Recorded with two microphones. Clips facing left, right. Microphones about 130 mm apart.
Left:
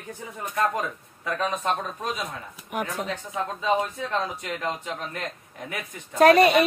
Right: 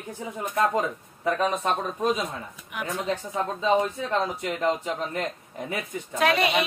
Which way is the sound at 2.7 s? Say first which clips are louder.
Left 5 dB; 45° left (ahead or behind).